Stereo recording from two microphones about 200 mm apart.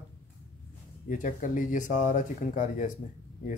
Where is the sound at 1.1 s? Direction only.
40° left (ahead or behind).